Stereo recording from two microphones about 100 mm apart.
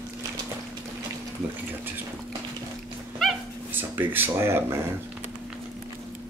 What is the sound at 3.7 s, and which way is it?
Speech, 20° right (ahead or behind).